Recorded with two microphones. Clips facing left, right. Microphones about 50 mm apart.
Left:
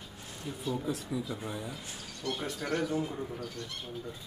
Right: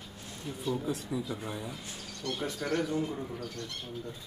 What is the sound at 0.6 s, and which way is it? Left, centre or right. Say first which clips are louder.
Speech: right 1 dB; centre.